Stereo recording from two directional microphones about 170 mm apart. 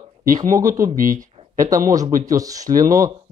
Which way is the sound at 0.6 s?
20° right (ahead or behind).